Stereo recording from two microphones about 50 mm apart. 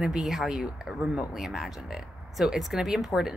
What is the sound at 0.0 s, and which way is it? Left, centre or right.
Speech, centre.